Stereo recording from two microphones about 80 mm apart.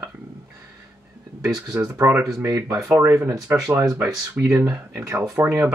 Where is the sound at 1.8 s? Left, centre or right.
Right.